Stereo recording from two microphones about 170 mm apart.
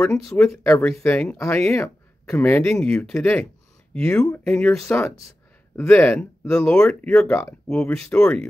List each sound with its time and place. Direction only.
0.0 s speech: 5° left (ahead or behind)